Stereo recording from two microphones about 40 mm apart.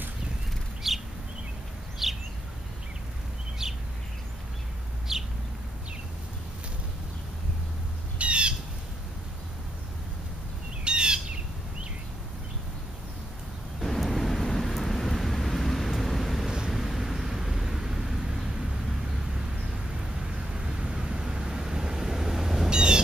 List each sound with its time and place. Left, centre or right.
0.8 s bird: centre
2.0 s a sound: centre
3.6 s a sound: centre
5.1 s bird: centre
8.2 s squawk: right
10.8 s bird: right
13.7 s vehicle: centre
16.4 s vehicle: centre
16.7 s vehicle: centre
20.0 s vehicle: centre
22.7 s a sound: right